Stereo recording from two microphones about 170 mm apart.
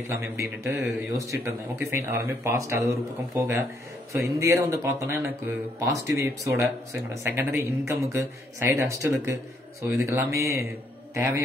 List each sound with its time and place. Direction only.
0.1 s speech: 15° right (ahead or behind)